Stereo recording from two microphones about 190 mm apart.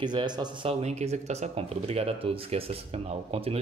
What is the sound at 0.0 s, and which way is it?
Speech, 25° right (ahead or behind).